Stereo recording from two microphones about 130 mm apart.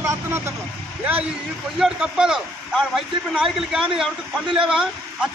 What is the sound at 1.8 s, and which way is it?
A man's voice, 5° right (ahead or behind).